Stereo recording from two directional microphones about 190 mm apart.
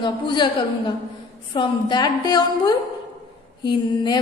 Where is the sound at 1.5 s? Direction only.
25° left (ahead or behind).